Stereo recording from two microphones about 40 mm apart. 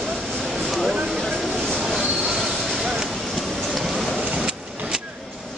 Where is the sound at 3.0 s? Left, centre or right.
Centre.